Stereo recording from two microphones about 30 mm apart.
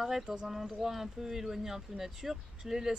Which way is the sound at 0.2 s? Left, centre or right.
Right.